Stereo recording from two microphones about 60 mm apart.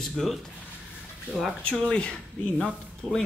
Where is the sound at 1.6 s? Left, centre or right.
Centre.